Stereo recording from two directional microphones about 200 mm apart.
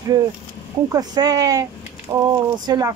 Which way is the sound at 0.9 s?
20° right (ahead or behind).